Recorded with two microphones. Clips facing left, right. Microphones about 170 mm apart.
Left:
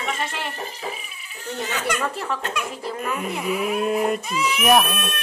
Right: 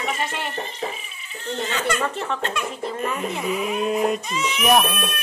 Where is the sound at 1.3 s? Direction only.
10° left (ahead or behind).